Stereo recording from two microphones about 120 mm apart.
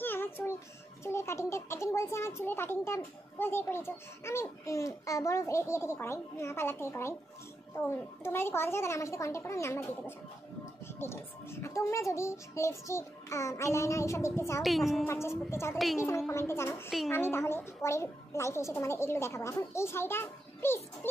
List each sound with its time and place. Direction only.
0.0 s child singing: 15° left (ahead or behind)
1.0 s a child's voice: 25° left (ahead or behind)
14.6 s a woman's voice: centre (ahead or behind)
15.0 s a child's voice: 20° left (ahead or behind)